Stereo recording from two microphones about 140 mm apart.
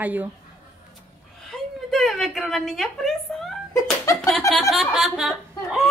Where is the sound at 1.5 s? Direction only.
Centre (ahead or behind).